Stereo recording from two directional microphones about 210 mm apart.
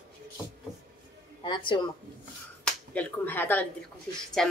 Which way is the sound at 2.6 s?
5° left (ahead or behind).